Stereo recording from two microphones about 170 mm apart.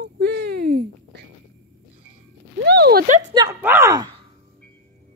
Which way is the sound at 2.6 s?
75° right (ahead or behind).